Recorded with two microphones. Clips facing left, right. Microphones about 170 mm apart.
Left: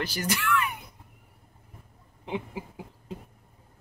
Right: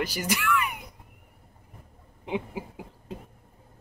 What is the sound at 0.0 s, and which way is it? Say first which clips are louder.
Speech: right 1 dB; 10° right (ahead or behind).